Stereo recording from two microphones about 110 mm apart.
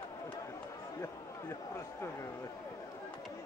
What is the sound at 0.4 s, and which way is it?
A man's voice, 30° left (ahead or behind).